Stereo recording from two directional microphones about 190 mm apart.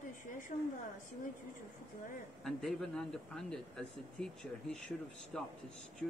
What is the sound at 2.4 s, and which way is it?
Speech, centre (ahead or behind).